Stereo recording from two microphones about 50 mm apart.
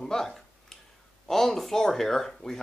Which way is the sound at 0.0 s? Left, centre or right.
Centre.